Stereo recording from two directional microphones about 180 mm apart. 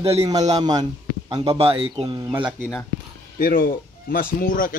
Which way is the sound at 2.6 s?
10° left (ahead or behind).